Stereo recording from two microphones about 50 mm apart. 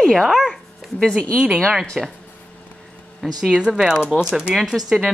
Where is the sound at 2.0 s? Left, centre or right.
Centre.